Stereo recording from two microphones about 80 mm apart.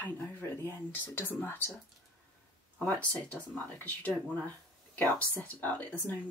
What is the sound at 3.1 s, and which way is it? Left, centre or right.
Speech, left.